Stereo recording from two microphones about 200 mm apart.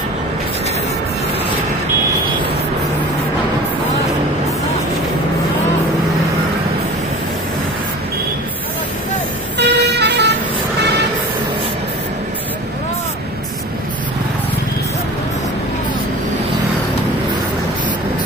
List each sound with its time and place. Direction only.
9.6 s vehicle: 55° right (ahead or behind)